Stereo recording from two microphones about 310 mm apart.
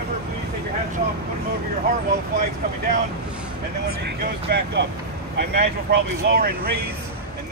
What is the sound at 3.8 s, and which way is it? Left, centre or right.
Speech, right.